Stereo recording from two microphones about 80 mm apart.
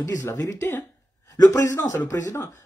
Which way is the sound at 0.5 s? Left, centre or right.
Left.